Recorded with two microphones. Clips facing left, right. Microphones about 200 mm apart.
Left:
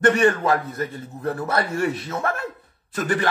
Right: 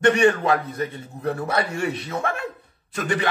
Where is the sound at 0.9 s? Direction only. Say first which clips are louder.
Even; centre (ahead or behind).